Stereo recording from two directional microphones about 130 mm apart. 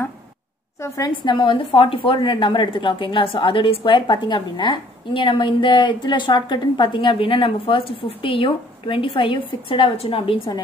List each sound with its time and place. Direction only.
0.7 s a woman's voice: 25° left (ahead or behind)
1.1 s a woman's voice: 40° left (ahead or behind)